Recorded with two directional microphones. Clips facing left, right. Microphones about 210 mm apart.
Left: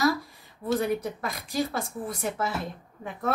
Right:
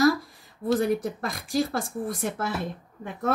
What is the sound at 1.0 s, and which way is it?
Speech, 50° right (ahead or behind).